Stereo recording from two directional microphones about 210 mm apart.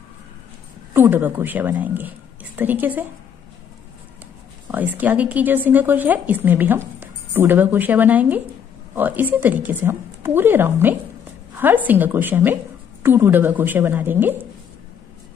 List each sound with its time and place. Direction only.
0.9 s speech: 10° right (ahead or behind)
4.6 s speech: 10° right (ahead or behind)